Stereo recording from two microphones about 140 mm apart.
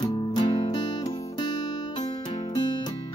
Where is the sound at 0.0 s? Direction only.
35° left (ahead or behind).